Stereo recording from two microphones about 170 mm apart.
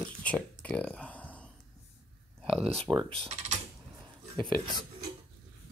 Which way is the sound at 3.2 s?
40° right (ahead or behind).